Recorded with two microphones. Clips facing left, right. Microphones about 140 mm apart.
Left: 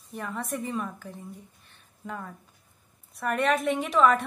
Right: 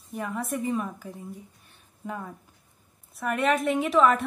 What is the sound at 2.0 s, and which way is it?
A woman's voice, 5° right (ahead or behind).